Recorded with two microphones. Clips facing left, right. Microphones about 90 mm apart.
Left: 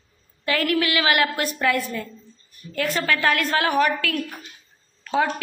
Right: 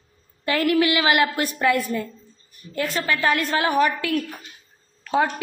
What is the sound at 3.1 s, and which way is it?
Speech, 5° right (ahead or behind).